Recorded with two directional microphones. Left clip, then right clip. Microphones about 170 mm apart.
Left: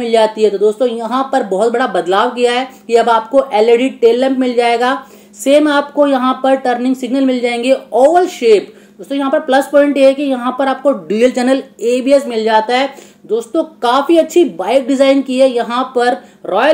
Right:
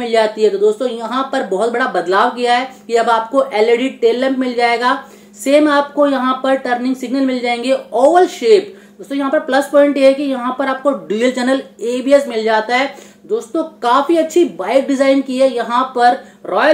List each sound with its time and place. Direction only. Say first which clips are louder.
0.0 s a woman's voice: left 2 dB; 35° left (ahead or behind)